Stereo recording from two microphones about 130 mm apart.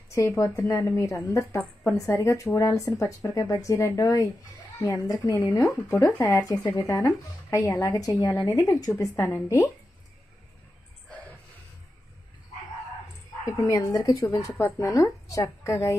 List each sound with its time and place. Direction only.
0.1 s a woman's voice: 15° left (ahead or behind)
1.6 s a woman's voice: 10° left (ahead or behind)
2.0 s speech: 20° left (ahead or behind)
13.5 s speech: 25° left (ahead or behind)